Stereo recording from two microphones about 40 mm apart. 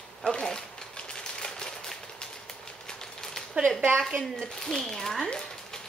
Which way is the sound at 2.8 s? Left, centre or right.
Centre.